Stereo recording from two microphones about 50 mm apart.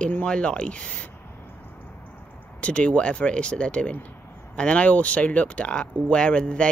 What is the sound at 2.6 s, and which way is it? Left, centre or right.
Speech, left.